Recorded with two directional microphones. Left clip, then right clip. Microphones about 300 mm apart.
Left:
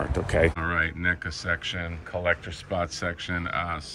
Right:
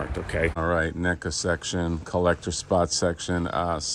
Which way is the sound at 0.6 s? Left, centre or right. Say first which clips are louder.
Right 1 dB; centre.